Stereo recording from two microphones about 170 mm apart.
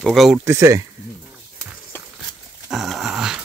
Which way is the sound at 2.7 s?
Centre (ahead or behind).